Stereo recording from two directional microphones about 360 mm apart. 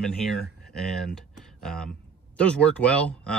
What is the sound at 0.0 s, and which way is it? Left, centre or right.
Speech, centre.